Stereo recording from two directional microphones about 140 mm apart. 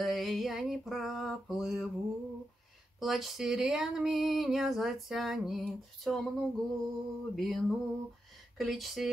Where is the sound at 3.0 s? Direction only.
Centre (ahead or behind).